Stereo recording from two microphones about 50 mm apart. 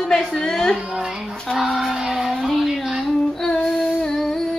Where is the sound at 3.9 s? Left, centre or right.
Centre.